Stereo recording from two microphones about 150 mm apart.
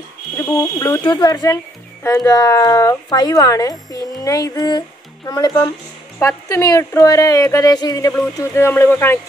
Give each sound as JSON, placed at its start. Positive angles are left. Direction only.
{"t": 0.4, "sound": "speech", "side_deg": 20}